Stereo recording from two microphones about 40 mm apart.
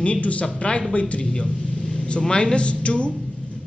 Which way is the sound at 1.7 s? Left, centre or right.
Centre.